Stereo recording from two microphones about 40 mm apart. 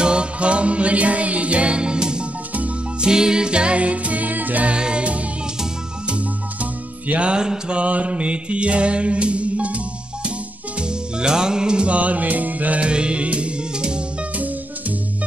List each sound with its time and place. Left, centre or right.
0.0 s music: right
4.6 s music: right
7.4 s mantra: right
10.8 s music: right
12.8 s music: right
14.3 s music: right